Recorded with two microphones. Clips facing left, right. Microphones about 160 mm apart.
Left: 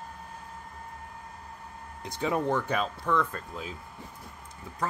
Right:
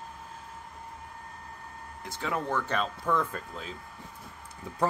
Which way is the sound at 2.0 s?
20° left (ahead or behind).